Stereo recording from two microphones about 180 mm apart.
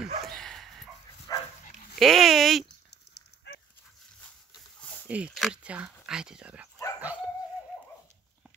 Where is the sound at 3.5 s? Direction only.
70° left (ahead or behind).